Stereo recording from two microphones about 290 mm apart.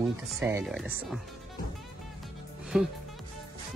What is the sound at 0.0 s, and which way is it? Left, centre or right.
Speech, centre.